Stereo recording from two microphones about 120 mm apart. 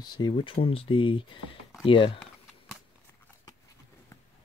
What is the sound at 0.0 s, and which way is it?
Speech, 35° left (ahead or behind).